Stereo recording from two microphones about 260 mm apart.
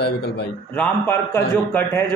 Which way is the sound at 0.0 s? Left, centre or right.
Left.